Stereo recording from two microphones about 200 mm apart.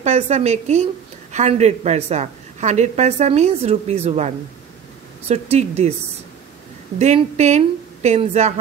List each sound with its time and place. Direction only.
0.0 s a woman's voice: 35° right (ahead or behind)
5.3 s a woman's voice: 30° right (ahead or behind)
7.0 s a woman's voice: 35° right (ahead or behind)